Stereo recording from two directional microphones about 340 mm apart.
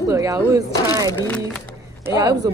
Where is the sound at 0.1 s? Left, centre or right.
Centre.